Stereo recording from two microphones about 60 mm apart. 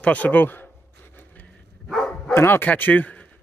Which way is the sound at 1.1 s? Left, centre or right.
Left.